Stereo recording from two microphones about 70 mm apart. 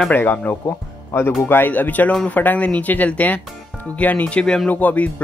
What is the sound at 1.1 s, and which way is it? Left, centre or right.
Speech, left.